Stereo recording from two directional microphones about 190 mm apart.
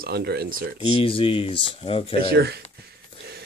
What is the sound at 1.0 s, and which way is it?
Speech, 30° left (ahead or behind).